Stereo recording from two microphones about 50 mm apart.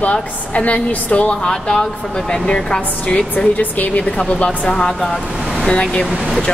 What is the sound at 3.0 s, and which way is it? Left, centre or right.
Speech, left.